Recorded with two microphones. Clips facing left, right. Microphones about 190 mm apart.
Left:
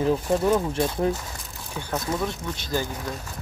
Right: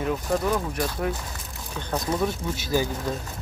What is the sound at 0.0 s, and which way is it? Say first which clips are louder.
Speech: left 3 dB; 30° left (ahead or behind).